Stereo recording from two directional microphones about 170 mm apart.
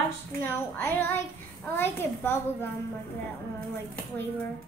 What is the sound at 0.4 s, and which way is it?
A woman's voice, 10° left (ahead or behind).